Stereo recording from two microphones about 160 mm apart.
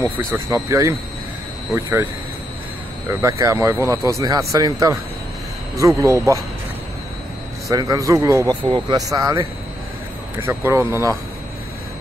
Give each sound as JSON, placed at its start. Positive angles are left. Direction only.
{"t": 0.0, "sound": "speech", "side_deg": -15}
{"t": 3.1, "sound": "speech", "side_deg": -20}
{"t": 7.7, "sound": "speech", "side_deg": -20}